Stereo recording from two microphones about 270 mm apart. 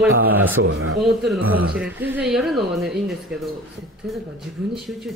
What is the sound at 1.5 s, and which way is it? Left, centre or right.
A woman's voice, centre.